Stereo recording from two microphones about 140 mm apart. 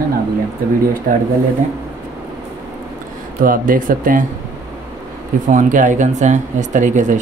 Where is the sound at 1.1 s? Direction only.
70° right (ahead or behind).